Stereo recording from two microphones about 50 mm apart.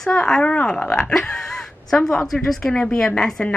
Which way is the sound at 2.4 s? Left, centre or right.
Centre.